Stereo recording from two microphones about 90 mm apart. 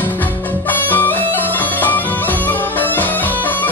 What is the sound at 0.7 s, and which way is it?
Bagpipes, 20° left (ahead or behind).